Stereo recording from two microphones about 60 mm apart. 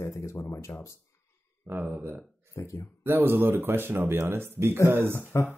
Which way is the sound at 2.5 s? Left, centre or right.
Left.